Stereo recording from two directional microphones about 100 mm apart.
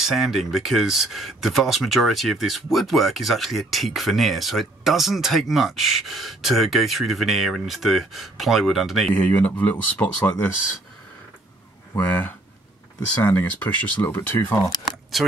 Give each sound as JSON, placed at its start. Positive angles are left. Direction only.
{"t": 0.0, "sound": "speech", "side_deg": 0}
{"t": 9.1, "sound": "speech", "side_deg": 15}
{"t": 12.0, "sound": "speech", "side_deg": 20}
{"t": 15.2, "sound": "speech", "side_deg": 0}